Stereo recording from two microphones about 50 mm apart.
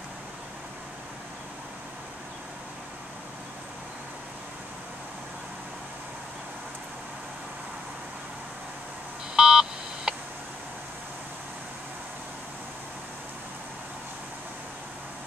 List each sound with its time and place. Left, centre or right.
9.3 s telephone dialing: centre